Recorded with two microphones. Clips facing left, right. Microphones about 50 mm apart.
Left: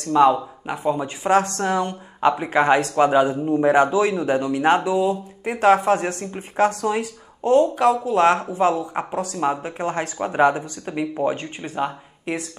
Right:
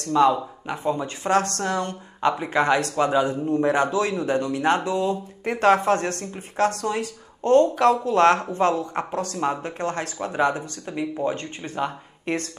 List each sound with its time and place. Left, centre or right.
0.1 s a man's voice: centre